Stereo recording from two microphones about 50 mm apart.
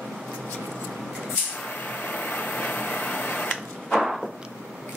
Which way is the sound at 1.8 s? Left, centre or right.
Left.